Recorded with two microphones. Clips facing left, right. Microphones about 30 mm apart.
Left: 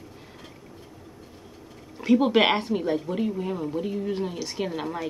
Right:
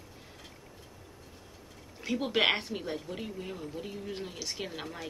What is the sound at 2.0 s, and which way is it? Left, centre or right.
Speech, centre.